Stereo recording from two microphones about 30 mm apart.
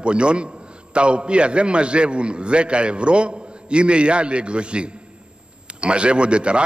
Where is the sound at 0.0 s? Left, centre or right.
Right.